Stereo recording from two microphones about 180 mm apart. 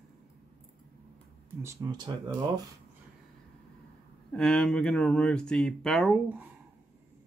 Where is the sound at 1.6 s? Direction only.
20° right (ahead or behind).